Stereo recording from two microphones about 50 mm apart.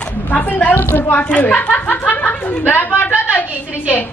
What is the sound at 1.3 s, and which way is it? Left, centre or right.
A woman's voice, left.